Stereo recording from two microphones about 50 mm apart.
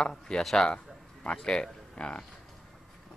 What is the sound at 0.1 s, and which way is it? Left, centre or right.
Speech, centre.